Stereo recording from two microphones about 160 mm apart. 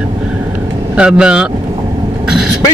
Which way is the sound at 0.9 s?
5° right (ahead or behind).